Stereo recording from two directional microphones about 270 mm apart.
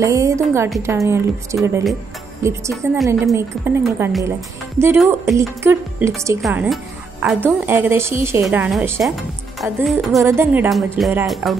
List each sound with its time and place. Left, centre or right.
0.0 s a woman's voice: centre
3.1 s a woman's voice: centre